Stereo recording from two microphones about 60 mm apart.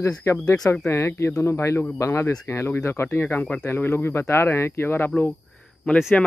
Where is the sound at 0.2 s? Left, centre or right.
Left.